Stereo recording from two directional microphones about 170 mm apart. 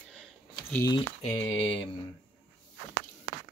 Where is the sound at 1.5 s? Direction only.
30° left (ahead or behind).